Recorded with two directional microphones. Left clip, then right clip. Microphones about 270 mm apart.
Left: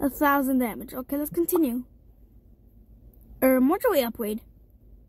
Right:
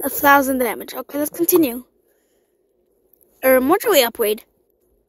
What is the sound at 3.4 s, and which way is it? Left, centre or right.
Speech, right.